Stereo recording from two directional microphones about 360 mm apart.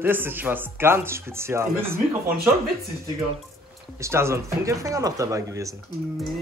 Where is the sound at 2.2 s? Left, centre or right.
Right.